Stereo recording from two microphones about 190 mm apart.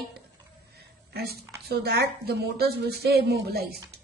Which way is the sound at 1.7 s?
55° right (ahead or behind).